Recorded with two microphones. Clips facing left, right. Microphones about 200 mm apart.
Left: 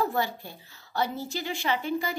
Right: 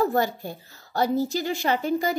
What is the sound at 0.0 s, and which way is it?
A woman's voice, 45° right (ahead or behind).